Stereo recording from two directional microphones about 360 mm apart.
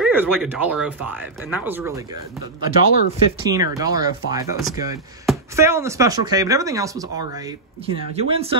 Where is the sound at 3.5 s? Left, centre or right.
Centre.